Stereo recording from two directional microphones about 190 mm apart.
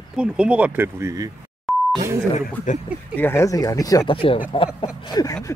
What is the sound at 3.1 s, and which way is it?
Speech, 10° left (ahead or behind).